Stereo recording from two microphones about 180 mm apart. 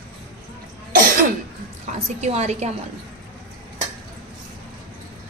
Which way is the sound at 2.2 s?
40° right (ahead or behind).